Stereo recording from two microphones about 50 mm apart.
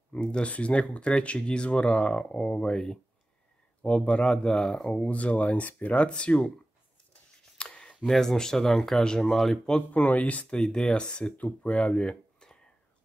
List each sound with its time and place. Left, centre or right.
0.1 s speech: centre
4.9 s speech: left
5.9 s speech: left
7.5 s a sound: centre
8.1 s speech: centre
9.8 s speech: left
10.5 s speech: centre; by 12.2 s left